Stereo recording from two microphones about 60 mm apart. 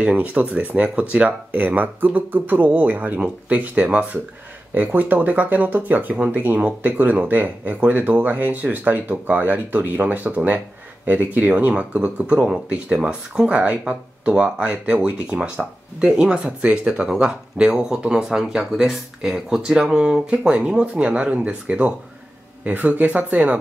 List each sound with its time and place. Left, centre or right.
0.0 s speech: right